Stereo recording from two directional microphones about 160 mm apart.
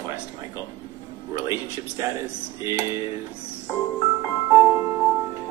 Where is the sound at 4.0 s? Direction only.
20° right (ahead or behind).